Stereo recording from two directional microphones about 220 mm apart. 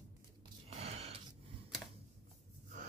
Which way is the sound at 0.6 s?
30° right (ahead or behind).